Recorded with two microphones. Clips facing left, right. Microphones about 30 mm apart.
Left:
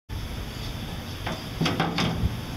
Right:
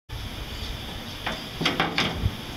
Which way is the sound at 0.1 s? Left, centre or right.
Centre.